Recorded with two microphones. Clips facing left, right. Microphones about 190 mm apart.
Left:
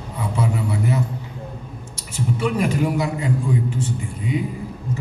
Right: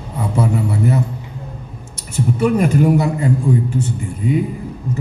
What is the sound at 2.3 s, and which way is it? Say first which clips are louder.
Speech: right 6 dB; 45° right (ahead or behind).